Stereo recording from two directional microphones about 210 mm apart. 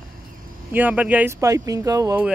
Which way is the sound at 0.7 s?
10° right (ahead or behind).